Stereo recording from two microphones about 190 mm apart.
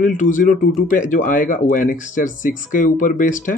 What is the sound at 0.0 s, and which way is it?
Speech, 40° left (ahead or behind).